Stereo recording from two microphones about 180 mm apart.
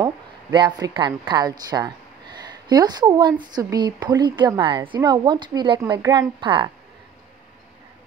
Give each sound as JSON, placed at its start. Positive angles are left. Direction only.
{"t": 0.0, "sound": "a woman's voice", "side_deg": -25}